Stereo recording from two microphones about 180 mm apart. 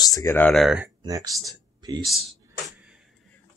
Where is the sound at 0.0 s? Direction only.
15° left (ahead or behind).